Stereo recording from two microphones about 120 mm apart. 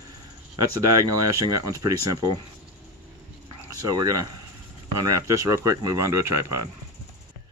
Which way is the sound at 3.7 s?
30° right (ahead or behind).